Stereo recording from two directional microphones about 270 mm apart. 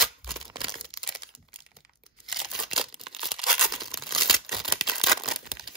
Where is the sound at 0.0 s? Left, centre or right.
Centre.